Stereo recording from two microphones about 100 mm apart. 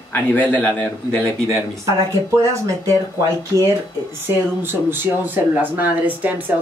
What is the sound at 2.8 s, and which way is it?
Speech, 30° right (ahead or behind).